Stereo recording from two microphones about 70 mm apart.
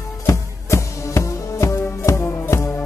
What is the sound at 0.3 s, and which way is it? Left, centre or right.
Music, left.